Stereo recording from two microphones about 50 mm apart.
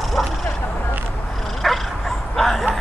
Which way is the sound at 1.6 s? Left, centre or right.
Centre.